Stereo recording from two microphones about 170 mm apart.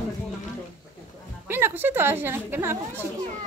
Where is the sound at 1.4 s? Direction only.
10° right (ahead or behind).